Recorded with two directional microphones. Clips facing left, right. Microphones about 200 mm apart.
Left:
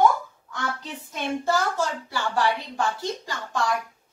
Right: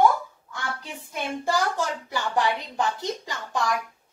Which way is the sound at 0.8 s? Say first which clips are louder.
Left 1 dB; 10° right (ahead or behind).